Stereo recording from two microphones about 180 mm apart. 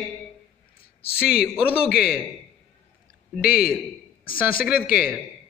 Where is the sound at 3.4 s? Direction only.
55° left (ahead or behind).